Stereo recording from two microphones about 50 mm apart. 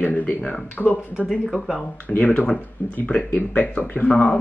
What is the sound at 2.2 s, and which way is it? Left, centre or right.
Speech, left.